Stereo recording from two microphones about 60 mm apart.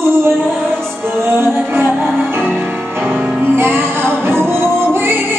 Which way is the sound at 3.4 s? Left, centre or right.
Right.